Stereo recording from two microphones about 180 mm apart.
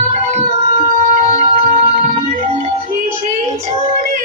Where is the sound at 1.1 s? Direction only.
35° right (ahead or behind).